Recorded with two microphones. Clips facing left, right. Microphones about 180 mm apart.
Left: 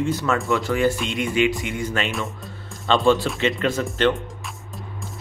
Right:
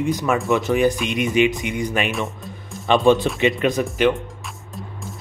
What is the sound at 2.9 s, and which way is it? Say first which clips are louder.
Speech: right 3 dB; 20° right (ahead or behind).